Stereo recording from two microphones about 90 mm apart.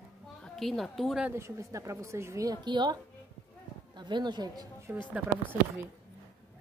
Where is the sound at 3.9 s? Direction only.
55° right (ahead or behind).